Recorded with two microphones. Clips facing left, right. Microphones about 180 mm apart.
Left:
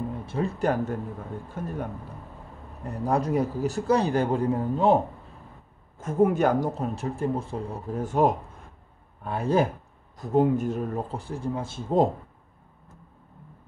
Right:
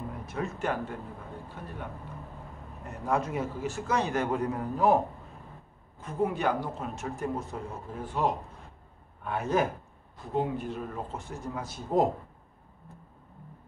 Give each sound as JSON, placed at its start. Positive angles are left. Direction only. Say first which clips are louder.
{"t": 0.2, "sound": "a man's voice", "louder": "left 5 dB", "side_deg": 30}
{"t": 5.9, "sound": "speech", "louder": "left 8 dB", "side_deg": 45}
{"t": 9.2, "sound": "a man's voice", "louder": "left 4 dB", "side_deg": 35}
{"t": 10.1, "sound": "a man's voice", "louder": "left 8 dB", "side_deg": 45}